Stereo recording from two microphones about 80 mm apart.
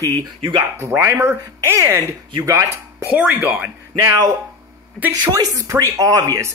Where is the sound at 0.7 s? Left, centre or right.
Right.